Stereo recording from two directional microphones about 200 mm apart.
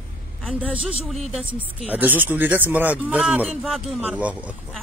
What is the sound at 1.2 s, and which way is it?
Speech, 30° right (ahead or behind).